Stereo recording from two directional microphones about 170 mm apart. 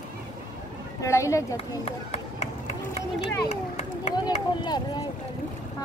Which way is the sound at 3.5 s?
40° left (ahead or behind).